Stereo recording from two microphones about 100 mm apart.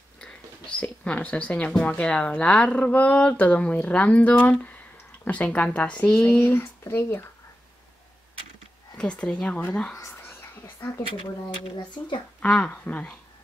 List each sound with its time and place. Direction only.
0.2 s speech: 10° left (ahead or behind)
6.2 s speech: 20° left (ahead or behind)
8.9 s speech: 10° left (ahead or behind)
9.9 s whispering: 30° left (ahead or behind)
12.4 s speech: 10° left (ahead or behind)